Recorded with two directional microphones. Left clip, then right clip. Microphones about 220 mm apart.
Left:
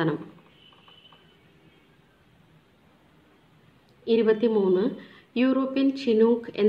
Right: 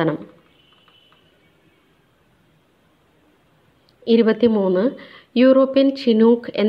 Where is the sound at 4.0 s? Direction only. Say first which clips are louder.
Right 6 dB; 30° right (ahead or behind).